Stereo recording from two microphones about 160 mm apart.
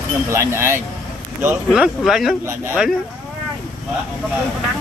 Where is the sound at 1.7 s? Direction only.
5° right (ahead or behind).